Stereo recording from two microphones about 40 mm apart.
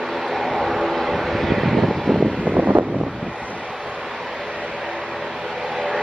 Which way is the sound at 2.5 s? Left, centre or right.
Right.